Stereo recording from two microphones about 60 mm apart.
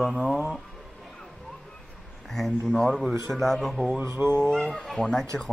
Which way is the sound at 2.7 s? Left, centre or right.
Centre.